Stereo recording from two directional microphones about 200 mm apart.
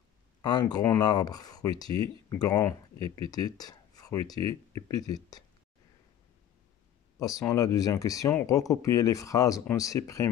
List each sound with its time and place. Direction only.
0.4 s speech: 20° left (ahead or behind)
7.2 s speech: 15° left (ahead or behind)